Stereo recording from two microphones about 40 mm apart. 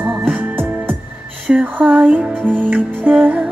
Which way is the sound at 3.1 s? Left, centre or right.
Right.